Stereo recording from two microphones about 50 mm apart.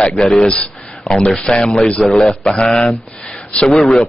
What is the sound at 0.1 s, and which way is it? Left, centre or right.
Speech, centre.